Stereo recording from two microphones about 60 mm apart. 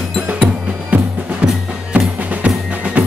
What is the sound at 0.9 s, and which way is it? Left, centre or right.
Music, right.